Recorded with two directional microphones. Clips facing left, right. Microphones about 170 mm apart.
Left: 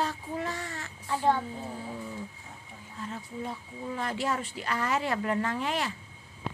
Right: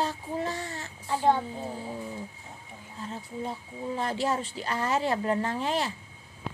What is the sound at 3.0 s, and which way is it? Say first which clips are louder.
Speech: right 1 dB; 30° right (ahead or behind).